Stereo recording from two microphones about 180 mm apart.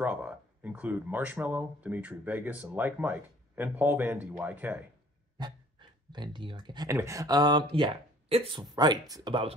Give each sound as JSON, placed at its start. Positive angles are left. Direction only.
{"t": 0.0, "sound": "speech", "side_deg": -10}
{"t": 5.4, "sound": "speech", "side_deg": -25}